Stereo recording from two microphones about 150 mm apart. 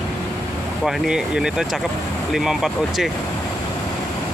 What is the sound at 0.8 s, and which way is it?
Speech, 5° right (ahead or behind).